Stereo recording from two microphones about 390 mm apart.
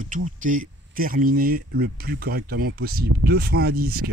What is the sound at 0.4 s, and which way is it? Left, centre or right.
Speech, right.